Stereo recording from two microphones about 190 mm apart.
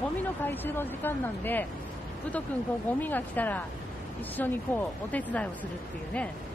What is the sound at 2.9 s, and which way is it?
Speech, 10° left (ahead or behind).